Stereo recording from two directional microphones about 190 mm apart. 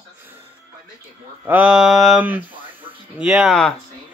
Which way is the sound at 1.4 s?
10° right (ahead or behind).